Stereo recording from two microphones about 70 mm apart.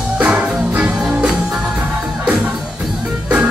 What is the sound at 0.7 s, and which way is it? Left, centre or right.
Music, centre.